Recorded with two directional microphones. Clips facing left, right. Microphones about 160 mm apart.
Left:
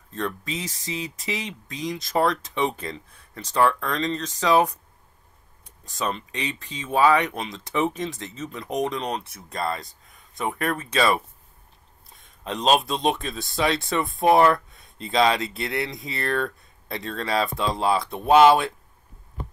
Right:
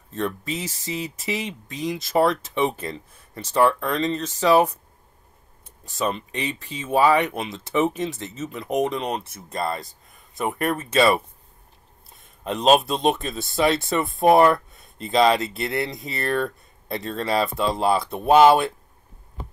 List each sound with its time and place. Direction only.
0.1 s speech: 5° right (ahead or behind)
5.9 s speech: 5° right (ahead or behind)
13.0 s speech: centre (ahead or behind)